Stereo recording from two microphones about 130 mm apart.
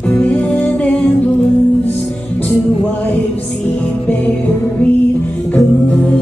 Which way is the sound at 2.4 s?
10° left (ahead or behind).